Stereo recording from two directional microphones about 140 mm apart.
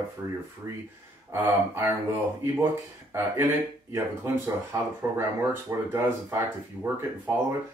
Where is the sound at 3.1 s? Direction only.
15° right (ahead or behind).